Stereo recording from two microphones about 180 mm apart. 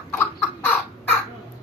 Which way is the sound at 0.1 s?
10° left (ahead or behind).